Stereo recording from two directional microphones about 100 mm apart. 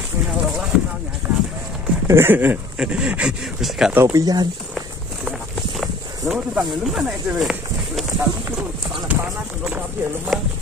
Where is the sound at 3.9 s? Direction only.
30° right (ahead or behind).